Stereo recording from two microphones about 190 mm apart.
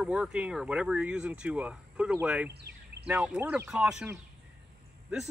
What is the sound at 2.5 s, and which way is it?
Bird, 60° right (ahead or behind).